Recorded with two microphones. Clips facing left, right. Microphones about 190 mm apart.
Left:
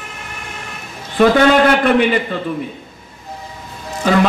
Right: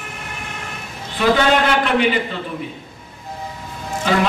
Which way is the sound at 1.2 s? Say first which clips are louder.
Left 5 dB; 50° left (ahead or behind).